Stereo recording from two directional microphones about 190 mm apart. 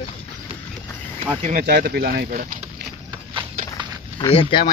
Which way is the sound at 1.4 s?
40° right (ahead or behind).